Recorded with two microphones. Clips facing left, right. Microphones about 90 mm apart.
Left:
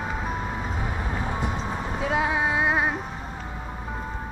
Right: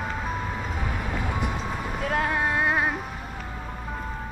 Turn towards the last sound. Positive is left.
turn(degrees=0)  # may be behind; listen again after turning